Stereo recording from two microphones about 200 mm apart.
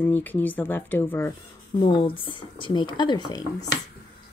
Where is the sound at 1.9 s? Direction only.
25° left (ahead or behind).